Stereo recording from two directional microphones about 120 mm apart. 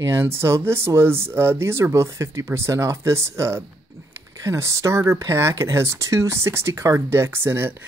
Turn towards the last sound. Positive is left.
turn(degrees=-20)  # may be behind; listen again after turning